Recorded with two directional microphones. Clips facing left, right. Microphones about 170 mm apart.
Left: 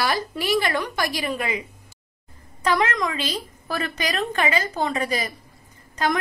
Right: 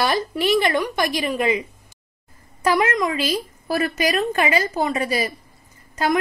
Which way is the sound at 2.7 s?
20° right (ahead or behind).